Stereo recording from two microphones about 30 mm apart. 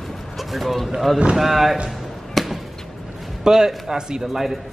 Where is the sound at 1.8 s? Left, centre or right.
Centre.